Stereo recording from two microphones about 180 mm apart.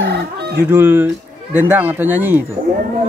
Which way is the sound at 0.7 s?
10° right (ahead or behind).